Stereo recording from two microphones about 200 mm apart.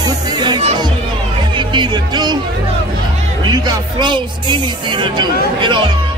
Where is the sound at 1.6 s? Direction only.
25° right (ahead or behind).